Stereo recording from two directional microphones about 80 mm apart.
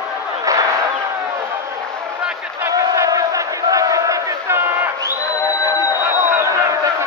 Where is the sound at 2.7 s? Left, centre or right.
Right.